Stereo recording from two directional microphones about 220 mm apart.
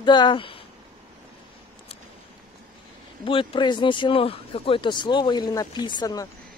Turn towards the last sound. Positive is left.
turn(degrees=15)  # may be behind; listen again after turning